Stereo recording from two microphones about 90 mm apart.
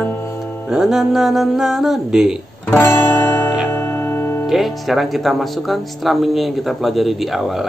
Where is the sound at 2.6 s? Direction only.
25° left (ahead or behind).